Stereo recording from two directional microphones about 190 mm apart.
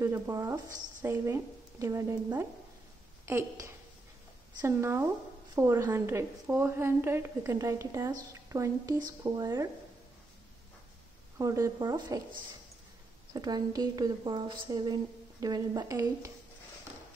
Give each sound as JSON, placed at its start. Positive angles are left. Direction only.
{"t": 0.0, "sound": "a woman's voice", "side_deg": -15}
{"t": 11.3, "sound": "a woman's voice", "side_deg": -15}
{"t": 13.3, "sound": "speech", "side_deg": -20}